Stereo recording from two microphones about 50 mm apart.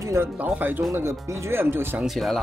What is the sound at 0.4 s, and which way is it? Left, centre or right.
Speech, right.